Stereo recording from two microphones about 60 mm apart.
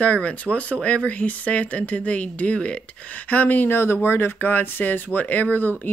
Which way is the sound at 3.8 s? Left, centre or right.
Left.